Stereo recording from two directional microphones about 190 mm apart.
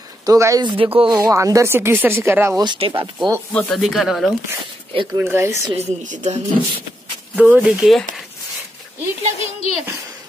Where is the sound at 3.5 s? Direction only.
5° left (ahead or behind).